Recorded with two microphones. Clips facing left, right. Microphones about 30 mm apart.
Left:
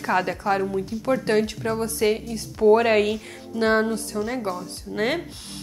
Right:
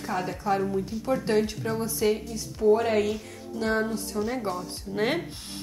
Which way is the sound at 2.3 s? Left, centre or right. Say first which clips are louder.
Left 7 dB; left.